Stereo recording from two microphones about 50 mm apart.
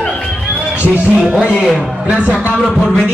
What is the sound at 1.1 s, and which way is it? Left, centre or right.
A man's voice, right.